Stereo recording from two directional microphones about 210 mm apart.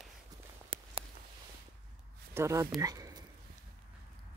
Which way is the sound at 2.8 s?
15° right (ahead or behind).